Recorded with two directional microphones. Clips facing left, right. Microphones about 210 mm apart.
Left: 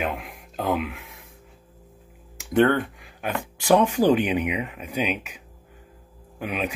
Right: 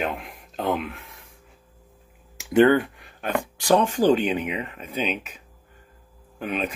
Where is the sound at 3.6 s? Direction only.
15° left (ahead or behind).